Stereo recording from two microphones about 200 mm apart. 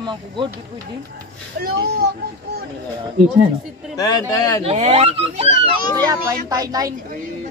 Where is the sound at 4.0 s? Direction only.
15° left (ahead or behind).